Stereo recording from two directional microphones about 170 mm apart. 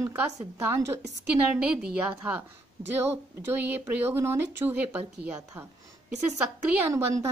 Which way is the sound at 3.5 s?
15° right (ahead or behind).